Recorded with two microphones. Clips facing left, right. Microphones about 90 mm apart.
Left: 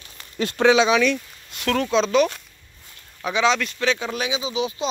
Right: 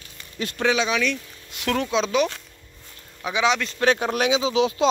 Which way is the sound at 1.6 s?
15° right (ahead or behind).